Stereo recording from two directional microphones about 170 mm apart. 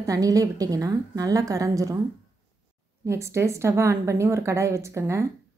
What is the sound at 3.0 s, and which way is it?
A woman's voice, 15° right (ahead or behind).